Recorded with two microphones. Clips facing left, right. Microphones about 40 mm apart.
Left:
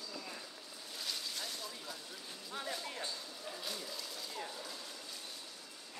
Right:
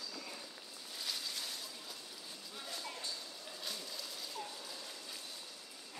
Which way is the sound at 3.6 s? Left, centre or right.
Centre.